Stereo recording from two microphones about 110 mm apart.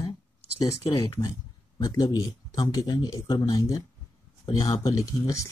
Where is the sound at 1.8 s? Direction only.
35° left (ahead or behind).